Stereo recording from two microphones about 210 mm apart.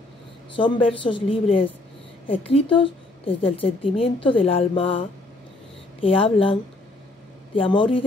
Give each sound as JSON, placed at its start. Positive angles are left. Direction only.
{"t": 0.6, "sound": "a woman's voice", "side_deg": 25}